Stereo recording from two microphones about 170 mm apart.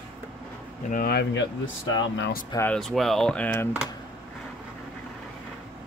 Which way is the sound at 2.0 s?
90° left.